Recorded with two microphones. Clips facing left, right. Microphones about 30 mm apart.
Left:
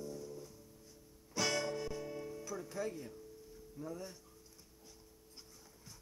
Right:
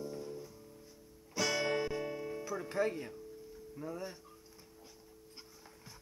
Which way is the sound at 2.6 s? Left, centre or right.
Right.